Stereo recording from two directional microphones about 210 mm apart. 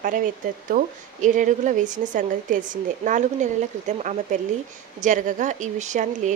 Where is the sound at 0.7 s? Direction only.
40° right (ahead or behind).